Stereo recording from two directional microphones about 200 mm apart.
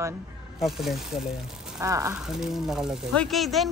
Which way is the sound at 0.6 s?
Centre (ahead or behind).